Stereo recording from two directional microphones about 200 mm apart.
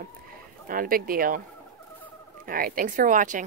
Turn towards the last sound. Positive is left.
turn(degrees=-40)  # may be behind; listen again after turning